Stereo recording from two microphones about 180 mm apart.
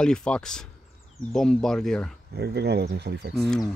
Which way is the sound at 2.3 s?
65° right (ahead or behind).